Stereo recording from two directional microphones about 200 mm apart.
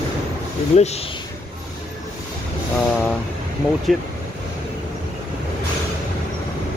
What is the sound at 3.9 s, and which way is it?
Speech, centre (ahead or behind).